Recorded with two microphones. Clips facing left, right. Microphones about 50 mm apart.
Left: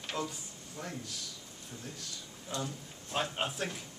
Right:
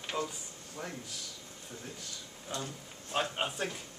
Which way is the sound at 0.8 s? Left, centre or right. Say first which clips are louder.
Right 1 dB; centre.